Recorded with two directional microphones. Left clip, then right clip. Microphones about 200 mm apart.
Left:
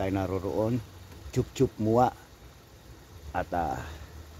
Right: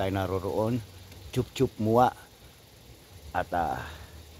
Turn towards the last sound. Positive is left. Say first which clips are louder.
# right 1 dB
turn(degrees=-15)  # may be behind; listen again after turning